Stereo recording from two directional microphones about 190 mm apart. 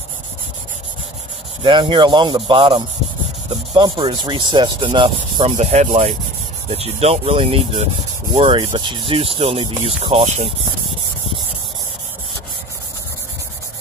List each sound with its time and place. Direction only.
1.6 s speech: 25° right (ahead or behind)